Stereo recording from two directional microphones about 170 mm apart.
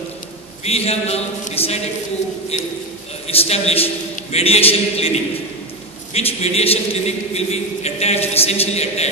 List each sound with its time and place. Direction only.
0.7 s a man's voice: 35° left (ahead or behind)